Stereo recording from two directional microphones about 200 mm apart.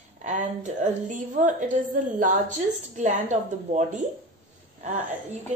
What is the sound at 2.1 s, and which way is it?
A woman's voice, 40° right (ahead or behind).